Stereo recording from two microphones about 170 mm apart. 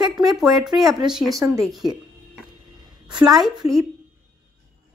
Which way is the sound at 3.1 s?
25° right (ahead or behind).